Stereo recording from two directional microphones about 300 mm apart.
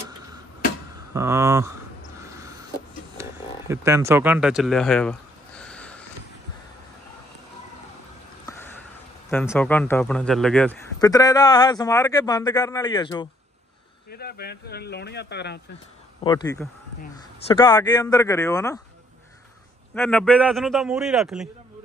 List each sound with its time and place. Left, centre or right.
1.1 s speech: centre
3.2 s speech: centre
5.6 s snort: centre
8.5 s a sound: centre
9.3 s speech: centre
14.1 s speech: left
16.3 s speech: centre
17.6 s speech: centre
20.0 s a man's voice: centre